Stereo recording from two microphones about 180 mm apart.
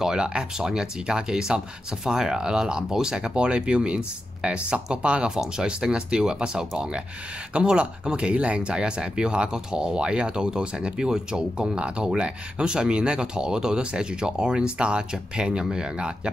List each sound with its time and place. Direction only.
0.0 s speech: 5° right (ahead or behind)